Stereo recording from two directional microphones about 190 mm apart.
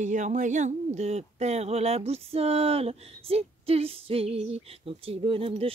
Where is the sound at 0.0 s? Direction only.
40° right (ahead or behind).